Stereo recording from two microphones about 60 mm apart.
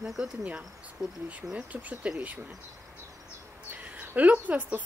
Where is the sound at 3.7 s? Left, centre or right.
Right.